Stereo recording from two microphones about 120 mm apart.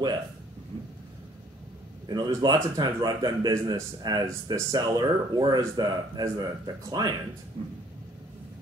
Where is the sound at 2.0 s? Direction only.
35° right (ahead or behind).